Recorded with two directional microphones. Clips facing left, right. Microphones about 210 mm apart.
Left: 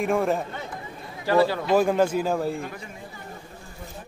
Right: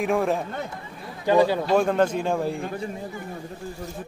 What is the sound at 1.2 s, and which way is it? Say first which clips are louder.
Speech: right 2 dB; 15° right (ahead or behind).